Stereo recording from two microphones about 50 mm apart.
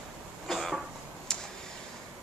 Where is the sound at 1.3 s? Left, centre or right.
Centre.